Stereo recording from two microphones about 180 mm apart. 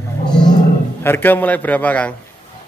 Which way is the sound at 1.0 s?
10° left (ahead or behind).